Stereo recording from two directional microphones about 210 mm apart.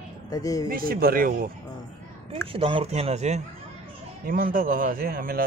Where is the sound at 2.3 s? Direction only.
25° right (ahead or behind).